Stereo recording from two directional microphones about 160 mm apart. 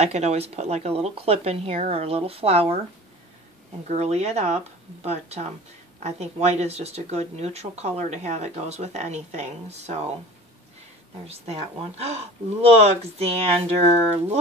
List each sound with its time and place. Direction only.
0.0 s speech: 45° right (ahead or behind)
3.9 s speech: 40° right (ahead or behind)
11.2 s speech: 40° right (ahead or behind)